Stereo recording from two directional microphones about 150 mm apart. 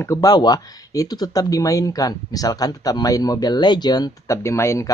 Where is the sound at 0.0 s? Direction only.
20° left (ahead or behind).